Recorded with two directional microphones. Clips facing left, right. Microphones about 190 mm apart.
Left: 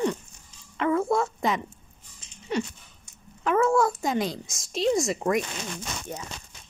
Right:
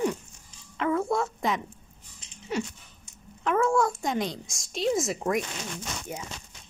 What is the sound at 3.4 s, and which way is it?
A woman's voice, centre (ahead or behind).